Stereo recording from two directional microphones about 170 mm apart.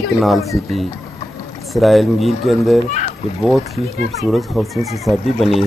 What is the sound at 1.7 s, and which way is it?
Speech, centre (ahead or behind).